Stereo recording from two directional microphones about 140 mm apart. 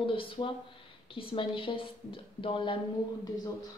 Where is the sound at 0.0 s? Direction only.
40° left (ahead or behind).